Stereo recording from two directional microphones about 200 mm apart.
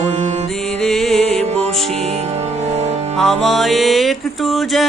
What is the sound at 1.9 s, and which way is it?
Music, 30° right (ahead or behind).